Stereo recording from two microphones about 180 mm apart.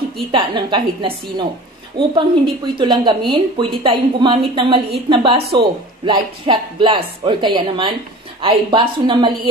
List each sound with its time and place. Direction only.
0.3 s speech: 25° right (ahead or behind)